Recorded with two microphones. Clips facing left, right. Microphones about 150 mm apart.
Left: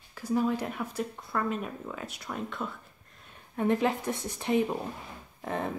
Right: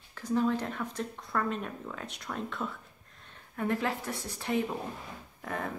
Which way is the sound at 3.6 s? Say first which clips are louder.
Left 5 dB; 20° left (ahead or behind).